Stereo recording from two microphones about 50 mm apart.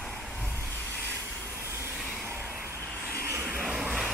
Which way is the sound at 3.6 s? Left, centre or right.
Centre.